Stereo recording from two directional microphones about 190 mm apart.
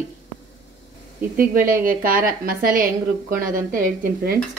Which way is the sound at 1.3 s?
50° right (ahead or behind).